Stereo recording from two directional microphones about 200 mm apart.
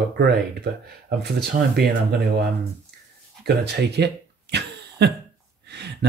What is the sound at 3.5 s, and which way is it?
Speech, 55° right (ahead or behind).